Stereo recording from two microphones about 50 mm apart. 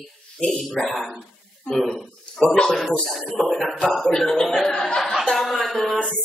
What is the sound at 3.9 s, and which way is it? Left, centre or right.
Speech, centre.